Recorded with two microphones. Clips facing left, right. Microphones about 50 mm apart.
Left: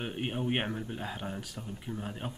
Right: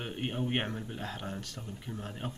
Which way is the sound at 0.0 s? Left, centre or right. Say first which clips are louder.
Left 1 dB; centre.